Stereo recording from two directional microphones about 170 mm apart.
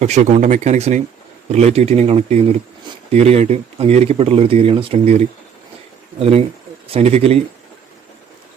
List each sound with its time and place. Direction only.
0.0 s speech: 45° right (ahead or behind)